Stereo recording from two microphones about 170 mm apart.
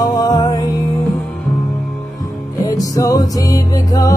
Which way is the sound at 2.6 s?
20° left (ahead or behind).